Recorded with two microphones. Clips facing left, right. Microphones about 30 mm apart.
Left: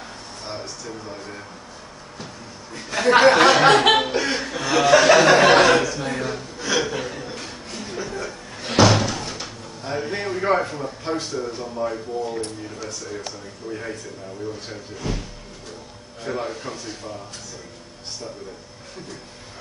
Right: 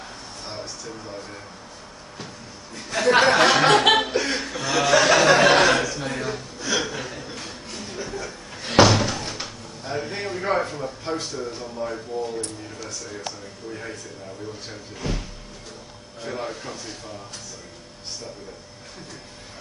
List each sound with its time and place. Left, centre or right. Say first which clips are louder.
0.5 s speech: left 2 dB; centre
2.7 s chuckle: left 2 dB; centre
8.8 s slam: left 1 dB; centre
9.8 s a sound: left 3 dB; centre
12.6 s speech: left 3 dB; centre
15.0 s speech: left 1 dB; centre
16.3 s speech: left 3 dB; centre